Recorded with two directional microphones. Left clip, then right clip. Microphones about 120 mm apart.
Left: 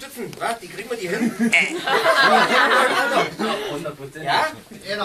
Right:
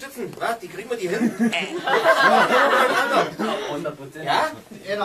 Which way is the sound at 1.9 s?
30° right (ahead or behind).